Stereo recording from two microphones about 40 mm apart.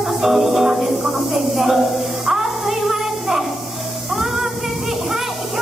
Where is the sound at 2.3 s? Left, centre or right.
Centre.